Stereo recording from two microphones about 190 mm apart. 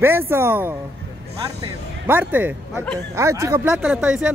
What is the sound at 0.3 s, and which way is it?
Speech, 10° right (ahead or behind).